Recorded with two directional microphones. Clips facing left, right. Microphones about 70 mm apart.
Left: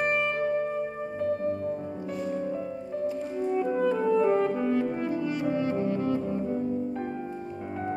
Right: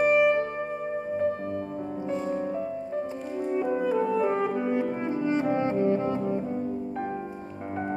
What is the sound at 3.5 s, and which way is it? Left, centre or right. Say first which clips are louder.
French horn: right 1 dB; centre.